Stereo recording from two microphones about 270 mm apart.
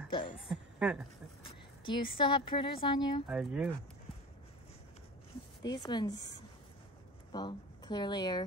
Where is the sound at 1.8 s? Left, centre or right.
Centre.